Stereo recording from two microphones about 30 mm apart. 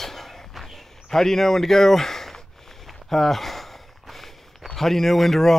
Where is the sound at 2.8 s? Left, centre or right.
Centre.